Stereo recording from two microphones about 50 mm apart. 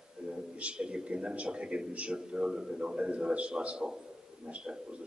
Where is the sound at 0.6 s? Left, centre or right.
Right.